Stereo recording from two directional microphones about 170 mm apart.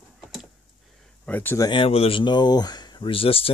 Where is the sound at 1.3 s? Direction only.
10° left (ahead or behind).